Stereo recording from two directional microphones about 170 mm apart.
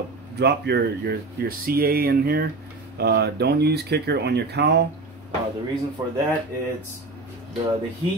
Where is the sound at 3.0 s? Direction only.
70° right (ahead or behind).